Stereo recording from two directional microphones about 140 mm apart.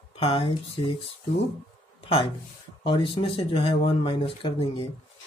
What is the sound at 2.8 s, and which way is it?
Speech, 35° left (ahead or behind).